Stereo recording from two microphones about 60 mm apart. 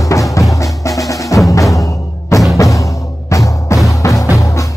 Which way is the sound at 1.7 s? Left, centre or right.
Left.